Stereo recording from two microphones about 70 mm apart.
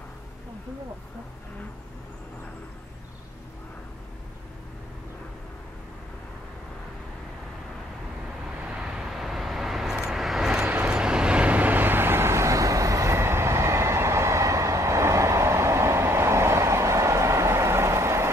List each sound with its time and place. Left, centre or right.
8.5 s vehicle: centre; by 18.3 s right